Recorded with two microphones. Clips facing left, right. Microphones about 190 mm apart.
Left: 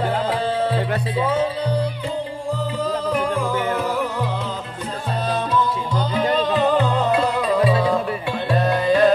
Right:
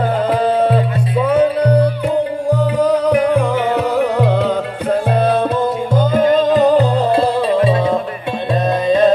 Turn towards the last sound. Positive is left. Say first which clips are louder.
# right 5 dB
turn(degrees=-35)  # may be behind; listen again after turning